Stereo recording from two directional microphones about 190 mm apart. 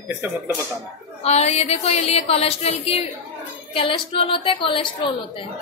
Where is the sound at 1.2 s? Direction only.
35° left (ahead or behind).